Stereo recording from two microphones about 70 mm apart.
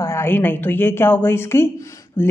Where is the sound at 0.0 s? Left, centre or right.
Left.